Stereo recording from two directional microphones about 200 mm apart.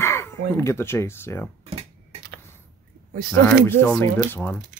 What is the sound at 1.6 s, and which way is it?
Dishes, 30° right (ahead or behind).